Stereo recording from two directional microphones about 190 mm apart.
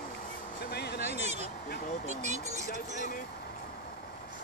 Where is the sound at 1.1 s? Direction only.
35° right (ahead or behind).